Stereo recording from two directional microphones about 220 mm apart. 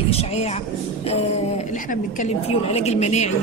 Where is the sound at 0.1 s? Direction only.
30° left (ahead or behind).